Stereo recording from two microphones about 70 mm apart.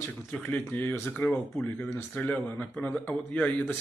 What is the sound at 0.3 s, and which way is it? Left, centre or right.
Speech, centre.